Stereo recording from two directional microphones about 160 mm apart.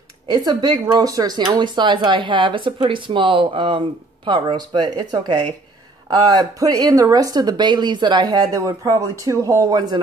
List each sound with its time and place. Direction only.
0.3 s speech: 25° right (ahead or behind)